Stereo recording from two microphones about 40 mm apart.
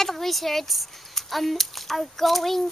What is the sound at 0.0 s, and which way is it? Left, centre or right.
Speech, centre.